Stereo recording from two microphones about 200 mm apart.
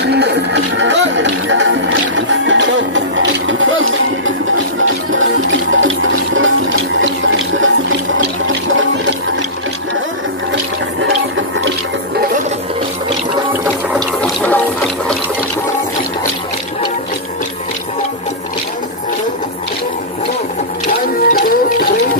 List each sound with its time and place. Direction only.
0.0 s music: 60° right (ahead or behind); by 5.9 s 80° right
7.0 s water: 75° right (ahead or behind)
10.5 s toilet flush: 65° right (ahead or behind)
13.9 s a sound: 10° left (ahead or behind)
21.3 s music: 45° left (ahead or behind)